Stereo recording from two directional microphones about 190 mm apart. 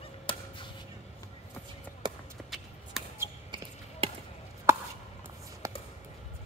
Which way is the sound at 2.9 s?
Centre (ahead or behind).